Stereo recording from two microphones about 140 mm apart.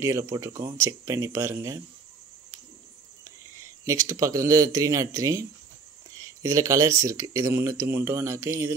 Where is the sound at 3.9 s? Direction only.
25° right (ahead or behind).